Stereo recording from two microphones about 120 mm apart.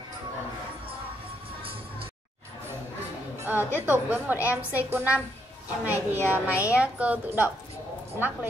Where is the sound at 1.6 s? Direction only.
50° right (ahead or behind).